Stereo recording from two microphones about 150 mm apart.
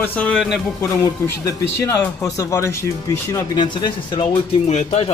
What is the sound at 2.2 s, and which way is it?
Speech, 20° left (ahead or behind).